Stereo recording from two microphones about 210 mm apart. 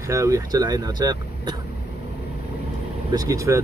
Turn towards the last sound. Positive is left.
turn(degrees=-15)  # may be behind; listen again after turning